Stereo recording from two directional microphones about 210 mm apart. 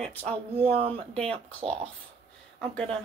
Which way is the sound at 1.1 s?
5° left (ahead or behind).